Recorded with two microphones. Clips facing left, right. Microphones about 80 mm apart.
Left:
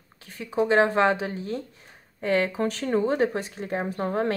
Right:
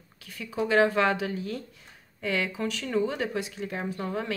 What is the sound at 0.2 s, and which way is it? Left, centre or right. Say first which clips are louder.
Speech: left 5 dB; left.